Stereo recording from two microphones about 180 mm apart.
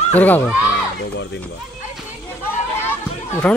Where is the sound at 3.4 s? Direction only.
5° left (ahead or behind).